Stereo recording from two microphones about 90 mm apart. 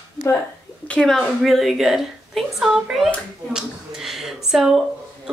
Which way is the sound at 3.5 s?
5° right (ahead or behind).